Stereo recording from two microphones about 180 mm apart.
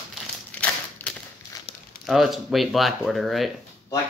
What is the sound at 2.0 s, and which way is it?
Speech, centre (ahead or behind).